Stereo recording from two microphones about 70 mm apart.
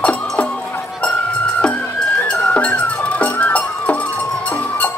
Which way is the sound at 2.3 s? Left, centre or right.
Centre.